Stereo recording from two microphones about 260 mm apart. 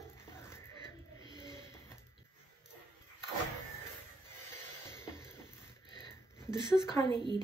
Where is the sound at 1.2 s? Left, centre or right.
Centre.